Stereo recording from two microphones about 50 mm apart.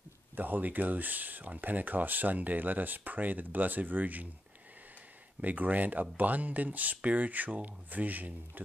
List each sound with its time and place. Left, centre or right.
0.4 s speech: right
5.4 s speech: right